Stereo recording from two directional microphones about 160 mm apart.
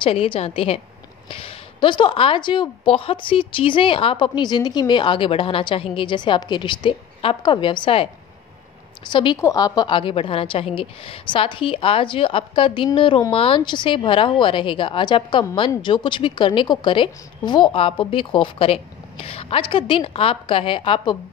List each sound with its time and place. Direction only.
0.0 s a woman's voice: 35° left (ahead or behind)